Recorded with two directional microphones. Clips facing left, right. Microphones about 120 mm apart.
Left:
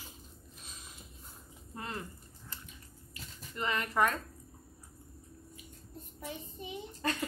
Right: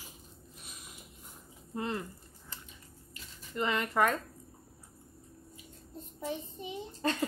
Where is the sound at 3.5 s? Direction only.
30° right (ahead or behind).